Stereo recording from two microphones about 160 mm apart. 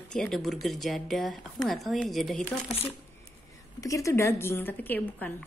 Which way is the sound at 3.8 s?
20° left (ahead or behind).